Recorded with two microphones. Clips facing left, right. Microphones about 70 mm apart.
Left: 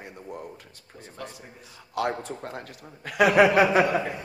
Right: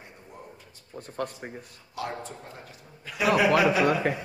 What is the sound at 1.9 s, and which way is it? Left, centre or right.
A man's voice, left.